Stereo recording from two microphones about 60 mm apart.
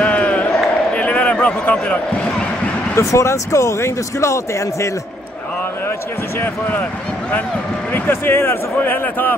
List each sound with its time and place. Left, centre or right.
0.0 s a sound: left
3.0 s speech: left
7.9 s speech: left